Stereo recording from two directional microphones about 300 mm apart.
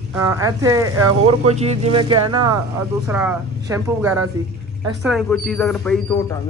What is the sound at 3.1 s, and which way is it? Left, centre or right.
A man's voice, centre.